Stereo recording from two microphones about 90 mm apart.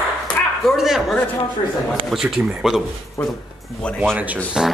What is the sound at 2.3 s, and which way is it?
Speech, 5° right (ahead or behind).